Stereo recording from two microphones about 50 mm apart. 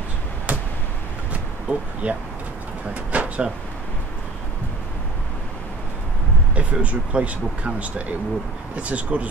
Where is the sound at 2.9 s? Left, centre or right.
Right.